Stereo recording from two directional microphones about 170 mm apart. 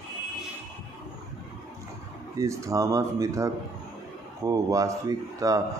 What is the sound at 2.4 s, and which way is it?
Speech, 20° right (ahead or behind).